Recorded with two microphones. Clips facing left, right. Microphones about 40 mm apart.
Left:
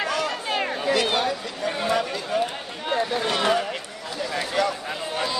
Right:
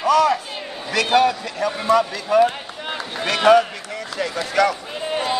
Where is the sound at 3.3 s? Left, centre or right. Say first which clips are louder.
Right 12 dB; right.